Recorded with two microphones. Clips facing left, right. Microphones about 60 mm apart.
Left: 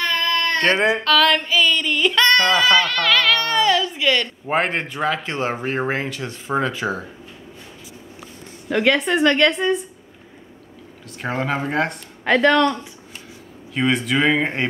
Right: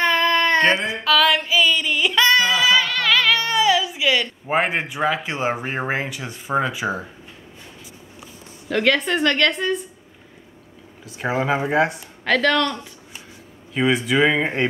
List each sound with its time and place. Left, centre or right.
0.0 s a sound: centre
1.0 s child singing: centre
8.6 s a woman's voice: centre
11.1 s speech: centre
12.3 s speech: centre
13.7 s speech: centre